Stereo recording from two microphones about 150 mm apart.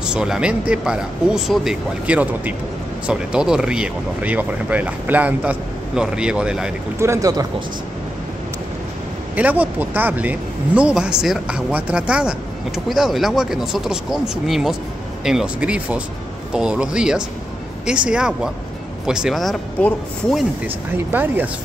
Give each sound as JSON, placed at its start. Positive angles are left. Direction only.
{"t": 0.0, "sound": "speech", "side_deg": -5}
{"t": 7.0, "sound": "speech", "side_deg": -20}
{"t": 9.3, "sound": "speech", "side_deg": -10}
{"t": 20.6, "sound": "speech", "side_deg": -15}